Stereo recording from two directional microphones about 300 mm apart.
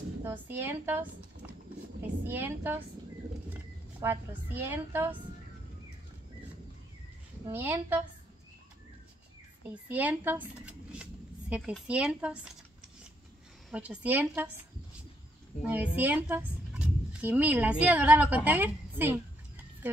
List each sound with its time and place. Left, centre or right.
0.2 s a woman's voice: centre
4.0 s a woman's voice: centre
7.4 s a woman's voice: centre
9.7 s speech: centre
13.7 s a woman's voice: centre
15.6 s speech: centre